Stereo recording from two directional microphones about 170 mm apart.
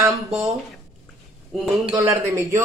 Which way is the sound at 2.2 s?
15° right (ahead or behind).